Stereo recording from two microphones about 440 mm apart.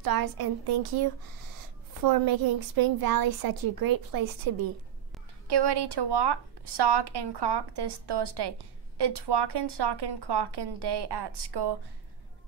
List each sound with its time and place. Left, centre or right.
0.0 s a woman's voice: right
5.5 s speech: right